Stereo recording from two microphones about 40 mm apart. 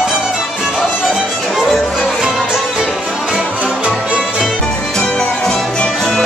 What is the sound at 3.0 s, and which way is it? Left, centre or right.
Music, right.